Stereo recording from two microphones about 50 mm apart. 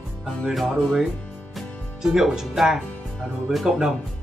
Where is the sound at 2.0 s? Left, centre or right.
Centre.